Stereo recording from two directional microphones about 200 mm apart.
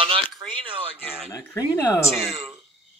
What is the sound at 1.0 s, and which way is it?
Speech, 10° left (ahead or behind).